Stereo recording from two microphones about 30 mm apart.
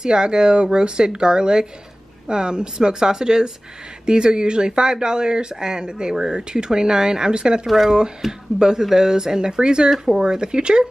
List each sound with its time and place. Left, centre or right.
0.0 s speech: right
6.1 s speech: centre
6.5 s speech: right
7.6 s speech: centre
8.2 s speech: centre
9.8 s speech: centre
10.2 s speech: right